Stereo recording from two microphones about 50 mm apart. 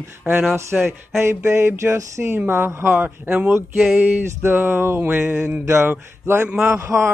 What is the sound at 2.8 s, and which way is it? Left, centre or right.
Speech, right.